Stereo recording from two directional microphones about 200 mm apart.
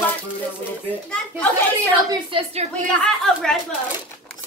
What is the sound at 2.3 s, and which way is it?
Speech, 30° right (ahead or behind).